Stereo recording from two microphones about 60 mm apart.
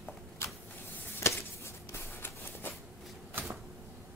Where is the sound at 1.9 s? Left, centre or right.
Left.